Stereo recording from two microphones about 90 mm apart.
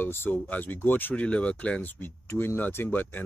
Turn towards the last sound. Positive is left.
turn(degrees=20)  # may be behind; listen again after turning